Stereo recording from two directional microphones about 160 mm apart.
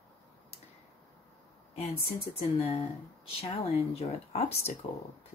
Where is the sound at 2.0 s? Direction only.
40° left (ahead or behind).